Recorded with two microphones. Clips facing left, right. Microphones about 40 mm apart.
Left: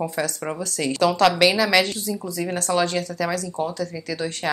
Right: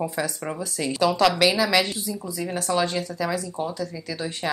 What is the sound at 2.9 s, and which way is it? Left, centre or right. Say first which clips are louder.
Speech: left 2 dB; centre.